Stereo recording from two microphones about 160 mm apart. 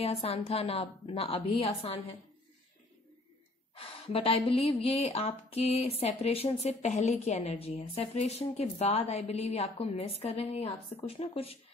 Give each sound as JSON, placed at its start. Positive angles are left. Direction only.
{"t": 0.0, "sound": "a woman's voice", "side_deg": 40}
{"t": 3.7, "sound": "a woman's voice", "side_deg": 35}